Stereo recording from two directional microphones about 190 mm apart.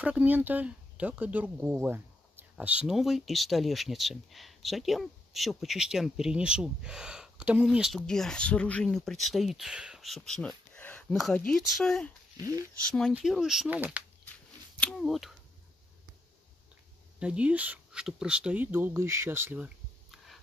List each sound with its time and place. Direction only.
0.0 s speech: 10° right (ahead or behind)
12.4 s speech: 20° right (ahead or behind)
12.8 s speech: 5° left (ahead or behind)
14.8 s speech: centre (ahead or behind)
17.2 s speech: 5° right (ahead or behind)